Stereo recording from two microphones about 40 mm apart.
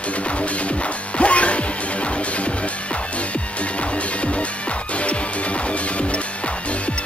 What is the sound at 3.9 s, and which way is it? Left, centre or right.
Music, left.